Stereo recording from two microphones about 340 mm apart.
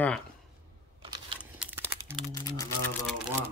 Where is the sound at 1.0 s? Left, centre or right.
Centre.